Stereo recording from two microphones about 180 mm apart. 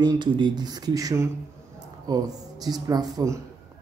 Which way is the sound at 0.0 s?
25° right (ahead or behind).